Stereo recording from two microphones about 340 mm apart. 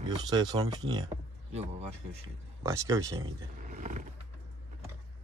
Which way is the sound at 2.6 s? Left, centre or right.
Centre.